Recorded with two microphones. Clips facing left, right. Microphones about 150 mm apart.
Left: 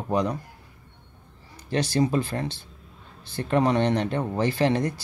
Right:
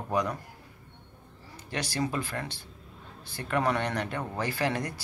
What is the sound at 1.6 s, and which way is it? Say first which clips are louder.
Speech: left 8 dB; 25° left (ahead or behind).